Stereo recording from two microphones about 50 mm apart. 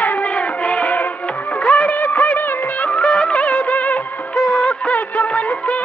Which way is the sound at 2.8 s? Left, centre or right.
Left.